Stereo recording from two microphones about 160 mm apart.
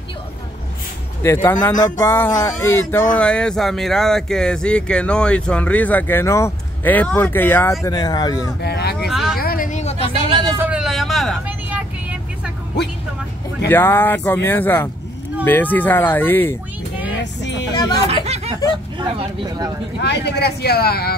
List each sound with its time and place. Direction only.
1.2 s speech: 15° left (ahead or behind)
7.8 s speech: 25° left (ahead or behind)
8.5 s speech: 90° left
9.1 s a sound: 5° right (ahead or behind)
9.4 s a sound: 65° left (ahead or behind); by 10.1 s 40° left (ahead or behind)
10.6 s a sound: 5° right (ahead or behind)
11.4 s vehicle: 10° right (ahead or behind)
13.7 s speech: 15° left (ahead or behind)
17.2 s vehicle: 90° left
18.0 s a sound: 40° right (ahead or behind)
18.9 s speech: 25° right (ahead or behind)
20.0 s speech: 90° left